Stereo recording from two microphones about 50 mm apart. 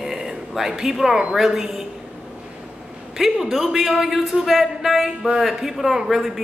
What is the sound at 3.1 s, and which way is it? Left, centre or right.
A man's voice, centre.